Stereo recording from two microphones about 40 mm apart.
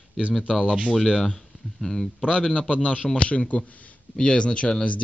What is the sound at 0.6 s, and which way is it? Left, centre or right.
Speech, right.